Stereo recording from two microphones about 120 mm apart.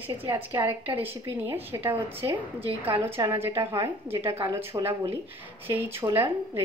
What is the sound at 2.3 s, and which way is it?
Speech, 50° right (ahead or behind).